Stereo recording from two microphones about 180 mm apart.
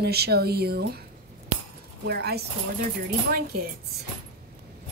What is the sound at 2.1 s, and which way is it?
Speech, 60° right (ahead or behind).